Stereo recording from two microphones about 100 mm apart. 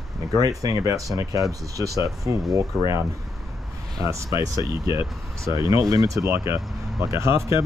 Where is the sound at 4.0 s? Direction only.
35° right (ahead or behind).